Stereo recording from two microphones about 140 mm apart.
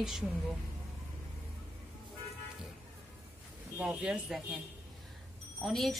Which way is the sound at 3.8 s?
5° right (ahead or behind).